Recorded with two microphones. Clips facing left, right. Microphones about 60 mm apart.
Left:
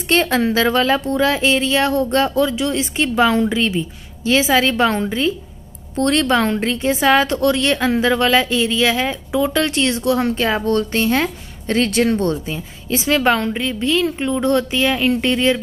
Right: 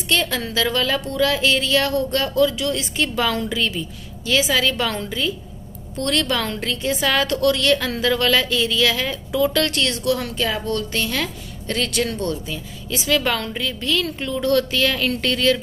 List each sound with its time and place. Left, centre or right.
0.1 s a woman's voice: left